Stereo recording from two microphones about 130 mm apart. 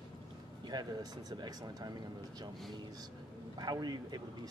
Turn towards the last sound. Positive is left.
turn(degrees=-30)  # may be behind; listen again after turning